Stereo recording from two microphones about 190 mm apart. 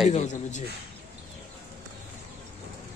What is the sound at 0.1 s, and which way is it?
Speech, 40° left (ahead or behind).